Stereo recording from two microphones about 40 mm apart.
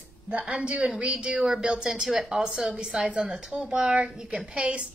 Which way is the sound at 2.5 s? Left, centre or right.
Right.